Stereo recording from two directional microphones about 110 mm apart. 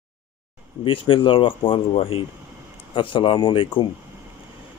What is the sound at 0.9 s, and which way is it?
Speech, 50° left (ahead or behind).